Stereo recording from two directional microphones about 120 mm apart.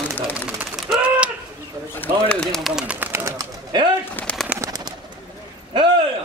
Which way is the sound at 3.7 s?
40° right (ahead or behind).